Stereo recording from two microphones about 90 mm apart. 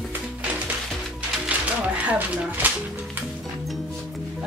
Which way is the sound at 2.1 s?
20° right (ahead or behind).